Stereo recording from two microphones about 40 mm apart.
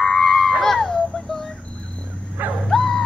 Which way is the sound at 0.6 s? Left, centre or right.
Centre.